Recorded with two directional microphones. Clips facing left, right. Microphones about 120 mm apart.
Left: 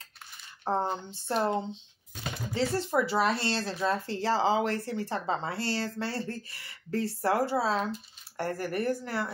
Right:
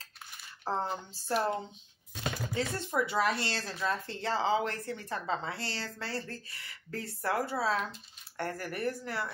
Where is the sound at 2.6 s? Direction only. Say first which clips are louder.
Left 6 dB; 30° left (ahead or behind).